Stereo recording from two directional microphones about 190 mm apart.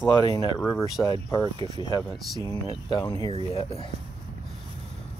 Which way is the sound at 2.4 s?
20° left (ahead or behind).